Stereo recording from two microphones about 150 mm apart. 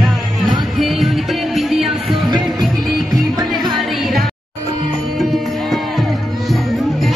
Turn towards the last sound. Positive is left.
turn(degrees=0)  # may be behind; listen again after turning